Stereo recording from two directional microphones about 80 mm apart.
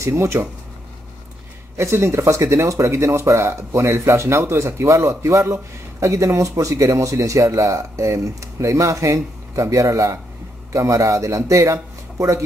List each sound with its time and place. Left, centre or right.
0.0 s speech: right
1.8 s speech: right